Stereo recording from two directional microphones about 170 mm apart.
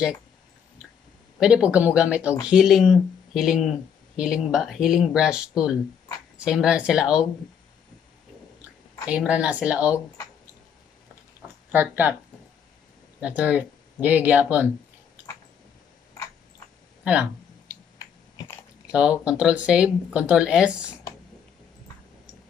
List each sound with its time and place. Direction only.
1.4 s speech: 5° right (ahead or behind)
9.1 s speech: 5° right (ahead or behind)
11.4 s a sound: 10° right (ahead or behind)
13.2 s speech: 10° right (ahead or behind)
17.0 s a sound: 5° right (ahead or behind)
18.9 s speech: 5° right (ahead or behind)